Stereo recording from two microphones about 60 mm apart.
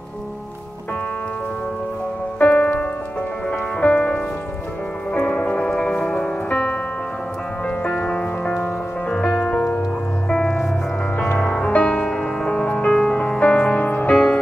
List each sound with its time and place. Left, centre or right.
2.3 s music: left
6.5 s music: left
7.8 s music: centre
14.1 s music: centre